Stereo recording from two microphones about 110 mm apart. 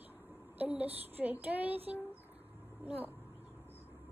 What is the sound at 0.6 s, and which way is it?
Speech, 15° right (ahead or behind).